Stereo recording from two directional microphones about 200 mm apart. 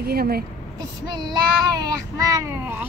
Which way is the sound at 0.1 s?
50° right (ahead or behind).